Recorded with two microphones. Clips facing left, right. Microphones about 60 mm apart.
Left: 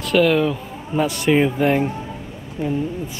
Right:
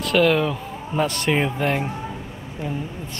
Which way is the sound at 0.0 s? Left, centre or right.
Centre.